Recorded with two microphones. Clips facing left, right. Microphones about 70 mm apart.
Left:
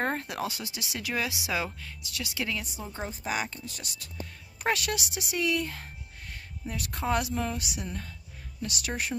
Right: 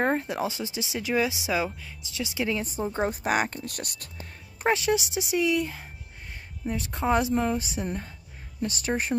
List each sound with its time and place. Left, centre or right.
0.0 s speech: centre
2.6 s speech: right
3.1 s speech: right
4.6 s speech: right